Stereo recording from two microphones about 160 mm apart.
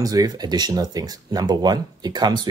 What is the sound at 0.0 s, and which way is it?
Speech, 20° right (ahead or behind).